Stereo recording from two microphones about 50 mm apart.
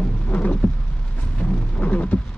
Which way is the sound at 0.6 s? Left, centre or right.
Left.